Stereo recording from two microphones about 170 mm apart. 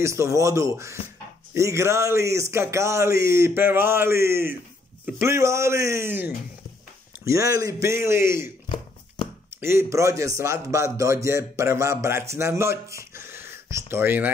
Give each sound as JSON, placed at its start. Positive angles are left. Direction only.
{"t": 0.0, "sound": "a man's voice", "side_deg": -15}
{"t": 8.6, "sound": "a sound", "side_deg": 30}
{"t": 9.6, "sound": "a man's voice", "side_deg": -15}